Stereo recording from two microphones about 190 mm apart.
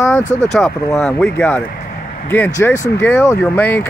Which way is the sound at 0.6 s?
5° left (ahead or behind).